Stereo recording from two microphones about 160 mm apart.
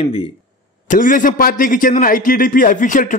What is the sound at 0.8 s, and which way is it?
A man's voice, 55° left (ahead or behind).